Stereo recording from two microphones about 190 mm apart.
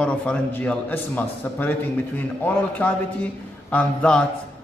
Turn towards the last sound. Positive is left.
turn(degrees=5)  # may be behind; listen again after turning